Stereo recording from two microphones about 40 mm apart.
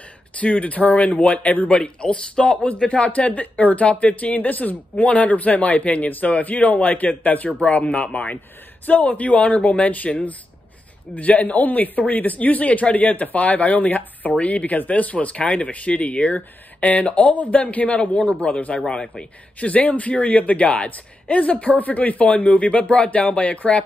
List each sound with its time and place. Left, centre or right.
0.4 s speech: left
1.7 s a man's voice: left
19.7 s speech: left